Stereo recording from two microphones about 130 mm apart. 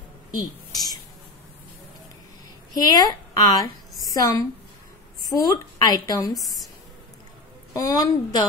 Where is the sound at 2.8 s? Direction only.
30° left (ahead or behind).